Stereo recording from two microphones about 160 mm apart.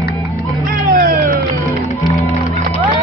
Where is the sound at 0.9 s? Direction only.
60° right (ahead or behind).